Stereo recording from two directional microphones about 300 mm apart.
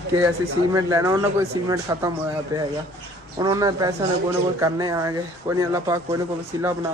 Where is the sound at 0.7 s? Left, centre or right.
Centre.